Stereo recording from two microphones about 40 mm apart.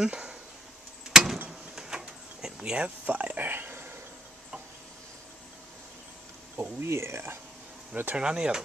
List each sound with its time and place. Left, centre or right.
0.0 s a sound: right
1.1 s a sound: centre
3.1 s dog: right
6.5 s speech: right
7.9 s speech: right
8.2 s speech: right